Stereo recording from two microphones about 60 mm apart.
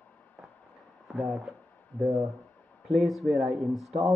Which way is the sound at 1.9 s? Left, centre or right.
Left.